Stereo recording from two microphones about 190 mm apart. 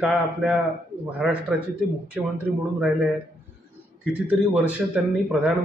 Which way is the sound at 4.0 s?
5° right (ahead or behind).